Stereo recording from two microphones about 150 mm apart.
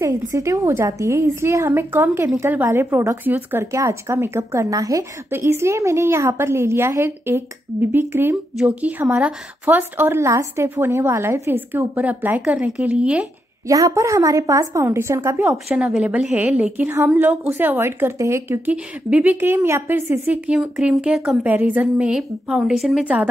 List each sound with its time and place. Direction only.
0.0 s a woman's voice: 20° right (ahead or behind)
13.7 s a woman's voice: 20° right (ahead or behind)
15.5 s a woman's voice: centre (ahead or behind)